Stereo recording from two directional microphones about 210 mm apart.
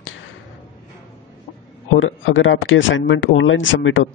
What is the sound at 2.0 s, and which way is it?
Speech, 65° left (ahead or behind).